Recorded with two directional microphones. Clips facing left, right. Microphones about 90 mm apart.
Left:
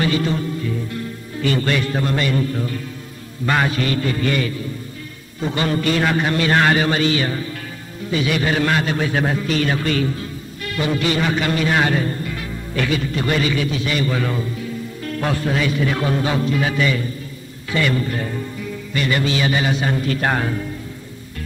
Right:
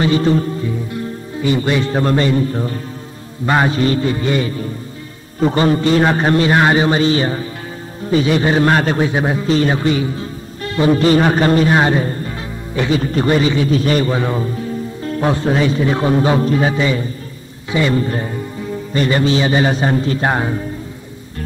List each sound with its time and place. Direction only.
0.0 s a man's voice: 30° right (ahead or behind)
0.7 s a man's voice: 20° right (ahead or behind)
6.5 s a man's voice: 20° right (ahead or behind)
9.0 s a man's voice: 20° right (ahead or behind)
10.6 s a man's voice: 30° right (ahead or behind)
13.7 s a man's voice: 40° right (ahead or behind)
14.1 s a man's voice: 30° right (ahead or behind)
17.9 s a man's voice: 30° right (ahead or behind)